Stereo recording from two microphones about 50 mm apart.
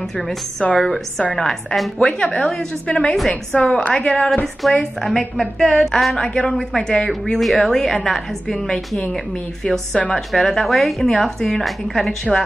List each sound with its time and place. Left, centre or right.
0.7 s a woman's voice: centre
2.0 s a woman's voice: centre
4.6 s a woman's voice: centre
7.3 s a woman's voice: centre
10.1 s a woman's voice: centre